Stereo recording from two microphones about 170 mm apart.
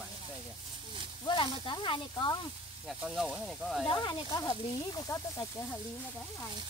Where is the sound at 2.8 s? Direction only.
Centre (ahead or behind).